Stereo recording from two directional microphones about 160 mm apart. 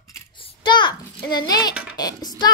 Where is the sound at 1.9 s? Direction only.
25° left (ahead or behind).